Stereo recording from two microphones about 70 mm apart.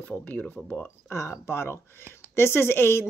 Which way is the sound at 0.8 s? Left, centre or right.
Left.